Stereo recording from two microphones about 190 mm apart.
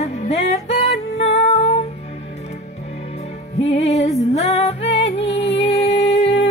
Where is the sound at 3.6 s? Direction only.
35° left (ahead or behind).